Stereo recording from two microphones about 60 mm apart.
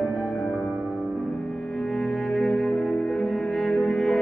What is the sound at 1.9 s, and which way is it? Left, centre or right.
Music, centre.